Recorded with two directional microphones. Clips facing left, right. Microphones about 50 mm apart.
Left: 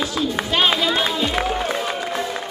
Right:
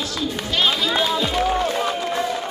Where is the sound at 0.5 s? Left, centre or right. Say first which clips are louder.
Left 2 dB; left.